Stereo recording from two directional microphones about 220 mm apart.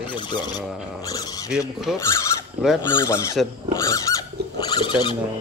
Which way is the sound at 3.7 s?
15° left (ahead or behind).